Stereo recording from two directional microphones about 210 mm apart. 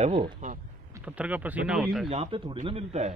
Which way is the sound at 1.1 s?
5° right (ahead or behind).